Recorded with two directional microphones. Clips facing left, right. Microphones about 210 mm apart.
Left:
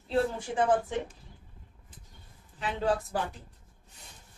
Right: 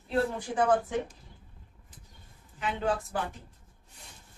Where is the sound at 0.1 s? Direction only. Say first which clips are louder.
Left 1 dB; 25° left (ahead or behind).